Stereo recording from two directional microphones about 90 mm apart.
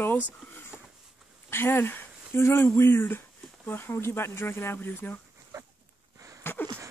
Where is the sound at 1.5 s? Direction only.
25° left (ahead or behind).